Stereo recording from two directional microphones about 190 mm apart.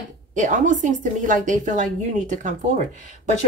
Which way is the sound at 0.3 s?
40° right (ahead or behind).